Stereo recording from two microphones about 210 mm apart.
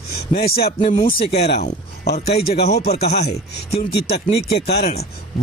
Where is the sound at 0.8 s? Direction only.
30° left (ahead or behind).